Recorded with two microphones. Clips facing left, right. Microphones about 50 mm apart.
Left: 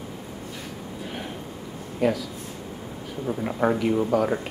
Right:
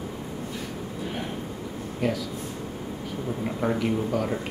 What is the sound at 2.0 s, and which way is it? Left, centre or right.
Speech, centre.